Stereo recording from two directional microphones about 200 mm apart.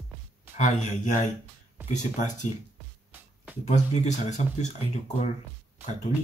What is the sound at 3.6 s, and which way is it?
Speech, 35° left (ahead or behind).